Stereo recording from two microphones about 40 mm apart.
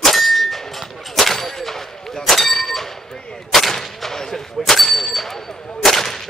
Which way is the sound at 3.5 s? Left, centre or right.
Centre.